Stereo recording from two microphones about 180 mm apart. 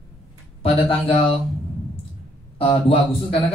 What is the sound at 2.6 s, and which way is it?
Speech, 30° left (ahead or behind).